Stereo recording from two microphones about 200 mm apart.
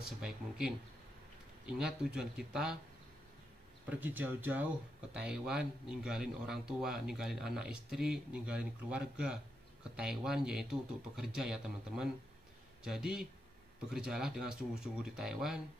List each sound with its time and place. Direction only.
0.0 s speech: 5° right (ahead or behind)
4.0 s speech: 10° right (ahead or behind)